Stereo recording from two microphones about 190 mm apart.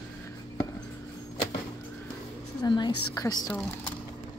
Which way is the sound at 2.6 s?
20° left (ahead or behind).